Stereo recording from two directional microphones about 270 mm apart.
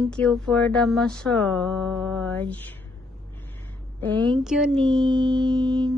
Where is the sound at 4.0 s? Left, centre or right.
Centre.